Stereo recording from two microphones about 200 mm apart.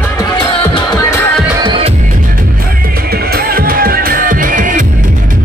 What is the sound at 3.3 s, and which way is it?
Music, 50° right (ahead or behind).